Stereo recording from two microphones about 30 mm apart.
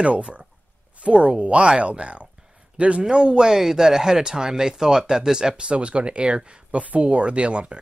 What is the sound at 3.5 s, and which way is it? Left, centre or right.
Speech, centre.